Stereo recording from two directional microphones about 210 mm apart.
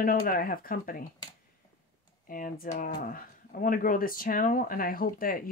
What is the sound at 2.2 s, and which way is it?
Speech, 40° left (ahead or behind).